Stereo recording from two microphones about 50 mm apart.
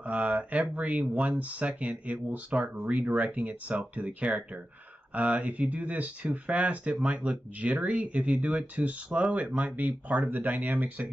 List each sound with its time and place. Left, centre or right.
0.0 s speech: right